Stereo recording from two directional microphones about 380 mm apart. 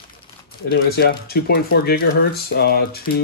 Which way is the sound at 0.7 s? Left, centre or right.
Left.